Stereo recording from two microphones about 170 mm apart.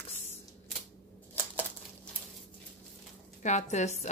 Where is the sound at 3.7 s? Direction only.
40° left (ahead or behind).